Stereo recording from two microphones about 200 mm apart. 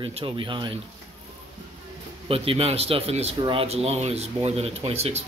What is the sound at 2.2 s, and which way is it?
Speech, 30° right (ahead or behind).